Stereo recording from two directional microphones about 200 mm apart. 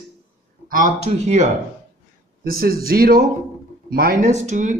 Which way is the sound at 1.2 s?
35° right (ahead or behind).